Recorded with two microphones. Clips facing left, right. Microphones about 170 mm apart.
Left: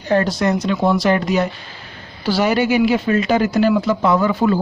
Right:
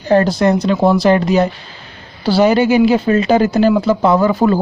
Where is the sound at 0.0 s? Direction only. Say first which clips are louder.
Right 5 dB; 35° right (ahead or behind).